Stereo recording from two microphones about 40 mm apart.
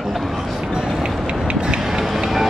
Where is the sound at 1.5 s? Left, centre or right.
Right.